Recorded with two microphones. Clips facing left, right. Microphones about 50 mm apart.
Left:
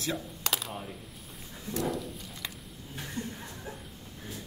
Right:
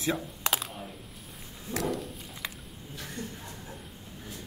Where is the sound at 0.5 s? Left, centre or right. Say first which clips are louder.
Right 2 dB; centre.